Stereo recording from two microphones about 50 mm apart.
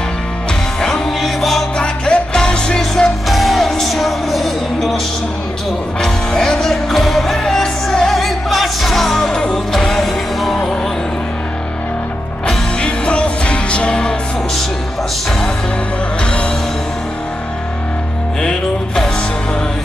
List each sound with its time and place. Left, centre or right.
0.7 s music: centre
1.2 s music: centre
1.8 s music: centre
3.3 s music: centre
6.0 s music: centre
12.4 s music: centre